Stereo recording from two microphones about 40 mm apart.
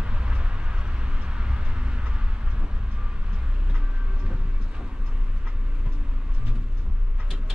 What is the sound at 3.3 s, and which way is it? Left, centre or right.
Train, right.